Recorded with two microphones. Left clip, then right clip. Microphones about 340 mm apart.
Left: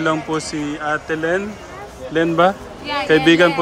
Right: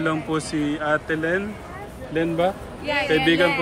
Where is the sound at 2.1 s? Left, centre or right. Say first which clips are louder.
Left 7 dB; left.